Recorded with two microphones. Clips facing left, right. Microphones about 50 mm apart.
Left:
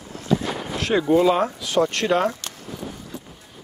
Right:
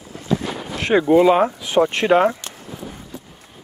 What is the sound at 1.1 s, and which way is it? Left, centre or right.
Speech, centre.